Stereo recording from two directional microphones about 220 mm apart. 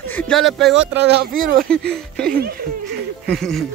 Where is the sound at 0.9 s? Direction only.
50° right (ahead or behind).